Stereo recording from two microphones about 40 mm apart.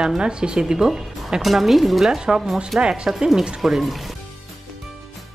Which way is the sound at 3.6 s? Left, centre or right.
Centre.